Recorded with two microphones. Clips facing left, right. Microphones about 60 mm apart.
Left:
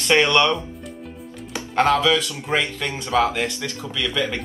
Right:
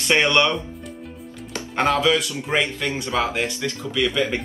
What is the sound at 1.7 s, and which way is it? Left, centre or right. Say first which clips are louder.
Speech: left 1 dB; right.